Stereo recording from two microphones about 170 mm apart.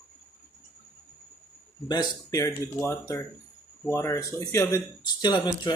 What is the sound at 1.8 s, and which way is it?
Speech, 25° left (ahead or behind).